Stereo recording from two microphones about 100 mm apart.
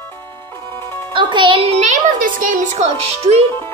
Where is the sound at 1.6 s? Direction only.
90° right.